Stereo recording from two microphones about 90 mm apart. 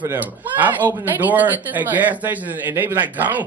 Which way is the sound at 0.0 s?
20° right (ahead or behind).